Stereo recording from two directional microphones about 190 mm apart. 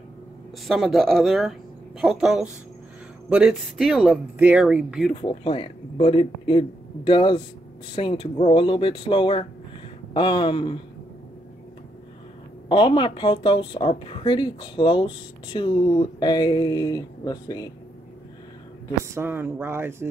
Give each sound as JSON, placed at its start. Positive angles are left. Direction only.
{"t": 0.7, "sound": "speech", "side_deg": 0}
{"t": 5.1, "sound": "a woman's voice", "side_deg": 30}
{"t": 12.6, "sound": "a woman's voice", "side_deg": 25}
{"t": 19.0, "sound": "speech", "side_deg": -15}